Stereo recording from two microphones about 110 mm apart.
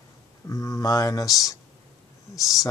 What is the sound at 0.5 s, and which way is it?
Speech, 30° left (ahead or behind).